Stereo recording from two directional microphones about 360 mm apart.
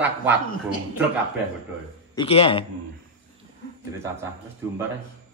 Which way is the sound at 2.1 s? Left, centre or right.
Centre.